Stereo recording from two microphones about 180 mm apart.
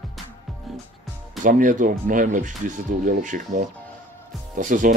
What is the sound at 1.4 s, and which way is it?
Speech, 45° right (ahead or behind).